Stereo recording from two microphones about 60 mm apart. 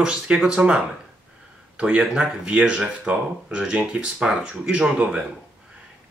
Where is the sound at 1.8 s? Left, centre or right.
Centre.